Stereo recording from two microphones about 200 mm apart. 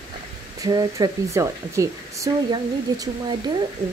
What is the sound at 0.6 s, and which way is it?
Speech, 20° right (ahead or behind).